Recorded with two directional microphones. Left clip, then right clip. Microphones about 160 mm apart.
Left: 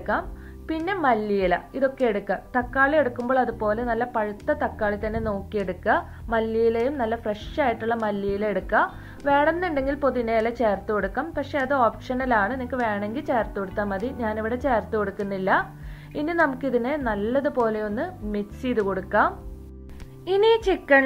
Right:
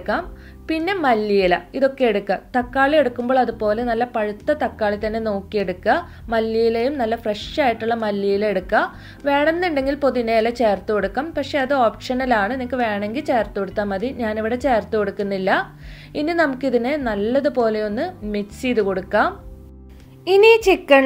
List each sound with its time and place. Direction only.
0.1 s a woman's voice: 25° right (ahead or behind)
20.3 s a woman's voice: 30° right (ahead or behind)